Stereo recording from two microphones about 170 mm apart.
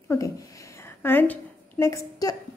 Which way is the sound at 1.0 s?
10° left (ahead or behind).